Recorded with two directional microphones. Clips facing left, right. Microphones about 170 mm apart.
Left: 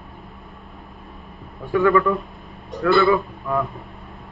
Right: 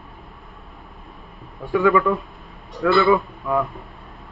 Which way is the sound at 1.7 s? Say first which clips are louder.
Even; 10° right (ahead or behind).